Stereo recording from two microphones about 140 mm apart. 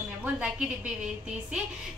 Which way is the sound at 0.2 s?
10° right (ahead or behind).